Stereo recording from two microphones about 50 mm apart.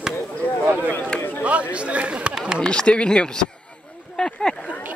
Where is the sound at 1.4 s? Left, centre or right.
Right.